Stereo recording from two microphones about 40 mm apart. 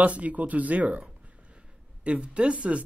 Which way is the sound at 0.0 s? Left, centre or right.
Right.